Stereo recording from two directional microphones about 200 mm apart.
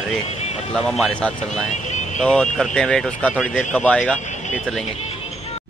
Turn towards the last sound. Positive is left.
turn(degrees=5)  # may be behind; listen again after turning